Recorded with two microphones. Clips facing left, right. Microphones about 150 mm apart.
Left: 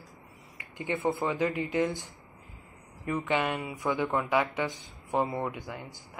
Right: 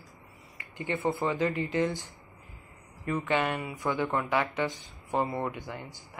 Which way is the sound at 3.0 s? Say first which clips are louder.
Even; 15° left (ahead or behind).